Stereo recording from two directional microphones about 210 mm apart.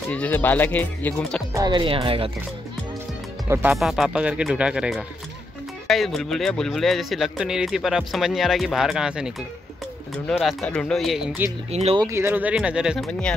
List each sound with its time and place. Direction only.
0.1 s speech: 10° left (ahead or behind)
1.5 s speech: 20° right (ahead or behind)
3.4 s speech: 10° right (ahead or behind)
3.7 s speech: centre (ahead or behind)
10.4 s speech: 5° left (ahead or behind)
11.7 s speech: 30° right (ahead or behind)
12.0 s speech: 15° right (ahead or behind)